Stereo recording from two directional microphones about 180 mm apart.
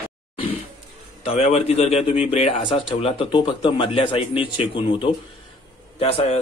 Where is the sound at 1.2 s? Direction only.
35° left (ahead or behind).